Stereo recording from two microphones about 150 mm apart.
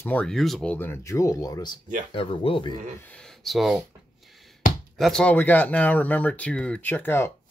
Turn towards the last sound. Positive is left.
turn(degrees=15)  # may be behind; listen again after turning